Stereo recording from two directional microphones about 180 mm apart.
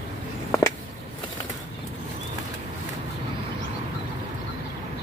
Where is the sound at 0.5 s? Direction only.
15° left (ahead or behind).